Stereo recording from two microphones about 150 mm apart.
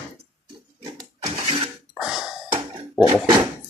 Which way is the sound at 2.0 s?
5° right (ahead or behind).